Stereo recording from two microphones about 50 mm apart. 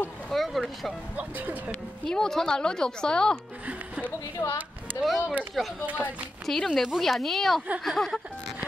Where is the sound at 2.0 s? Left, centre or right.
Centre.